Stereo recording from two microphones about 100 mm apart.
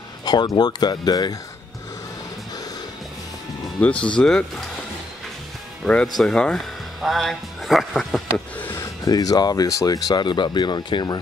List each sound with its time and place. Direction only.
0.2 s speech: 45° left (ahead or behind)
3.8 s speech: 15° left (ahead or behind)
5.9 s speech: 10° left (ahead or behind)
8.7 s speech: 40° left (ahead or behind)